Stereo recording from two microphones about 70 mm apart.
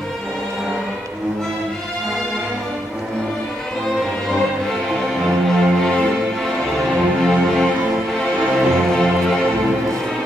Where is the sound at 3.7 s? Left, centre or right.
Centre.